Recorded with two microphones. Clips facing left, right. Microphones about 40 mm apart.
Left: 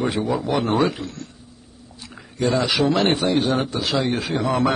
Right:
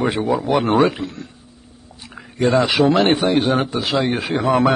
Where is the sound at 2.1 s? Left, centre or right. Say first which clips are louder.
Right 4 dB; centre.